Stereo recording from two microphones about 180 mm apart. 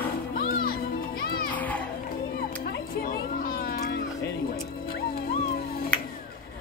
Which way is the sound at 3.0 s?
55° left (ahead or behind).